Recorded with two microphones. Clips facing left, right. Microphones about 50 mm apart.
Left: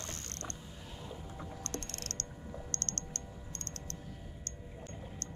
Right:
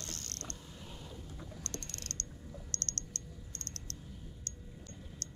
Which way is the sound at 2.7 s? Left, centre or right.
Left.